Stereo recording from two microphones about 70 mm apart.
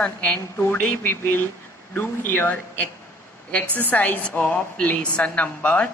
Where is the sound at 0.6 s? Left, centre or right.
Left.